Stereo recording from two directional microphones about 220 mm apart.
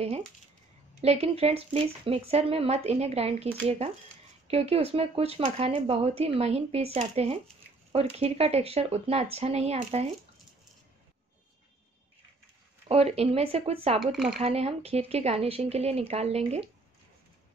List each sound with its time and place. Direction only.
1.0 s speech: 30° right (ahead or behind)
12.8 s speech: 25° right (ahead or behind)
14.1 s speech: centre (ahead or behind)
14.4 s speech: 30° right (ahead or behind)